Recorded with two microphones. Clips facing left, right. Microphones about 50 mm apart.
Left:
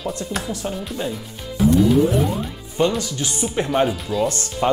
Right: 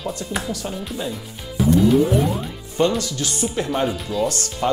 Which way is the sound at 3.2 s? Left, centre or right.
Centre.